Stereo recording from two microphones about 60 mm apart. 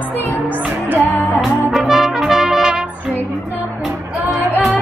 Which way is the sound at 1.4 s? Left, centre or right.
Centre.